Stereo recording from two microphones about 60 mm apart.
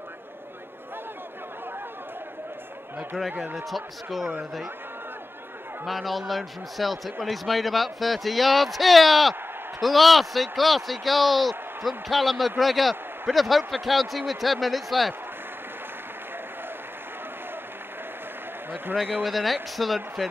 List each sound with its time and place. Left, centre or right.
3.2 s speech: centre
5.9 s speech: centre
19.2 s speech: centre